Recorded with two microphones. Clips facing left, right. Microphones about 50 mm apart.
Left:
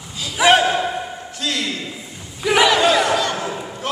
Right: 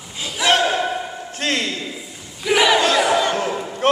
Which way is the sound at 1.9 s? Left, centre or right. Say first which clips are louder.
Even; centre.